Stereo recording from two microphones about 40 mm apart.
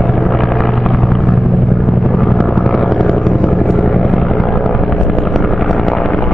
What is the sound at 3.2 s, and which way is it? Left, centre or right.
Vehicle, centre.